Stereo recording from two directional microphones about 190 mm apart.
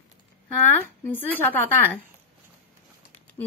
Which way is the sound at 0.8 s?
10° left (ahead or behind).